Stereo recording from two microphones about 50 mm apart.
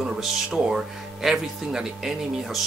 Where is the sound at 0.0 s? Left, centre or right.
Centre.